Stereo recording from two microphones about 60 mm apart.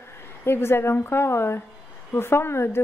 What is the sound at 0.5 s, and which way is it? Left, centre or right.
A woman's voice, left.